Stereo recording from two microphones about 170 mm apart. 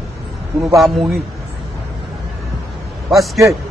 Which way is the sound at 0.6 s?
Centre (ahead or behind).